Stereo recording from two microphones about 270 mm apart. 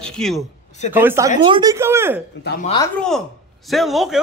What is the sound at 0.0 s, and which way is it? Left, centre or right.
A woman's voice, centre.